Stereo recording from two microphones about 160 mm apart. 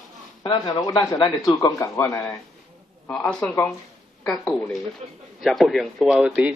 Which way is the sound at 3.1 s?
5° left (ahead or behind).